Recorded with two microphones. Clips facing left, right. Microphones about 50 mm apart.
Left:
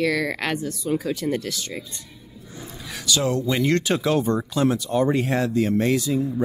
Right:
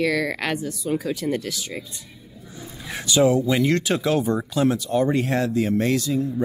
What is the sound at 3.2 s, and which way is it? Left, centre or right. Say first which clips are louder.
Speech: right 3 dB; centre.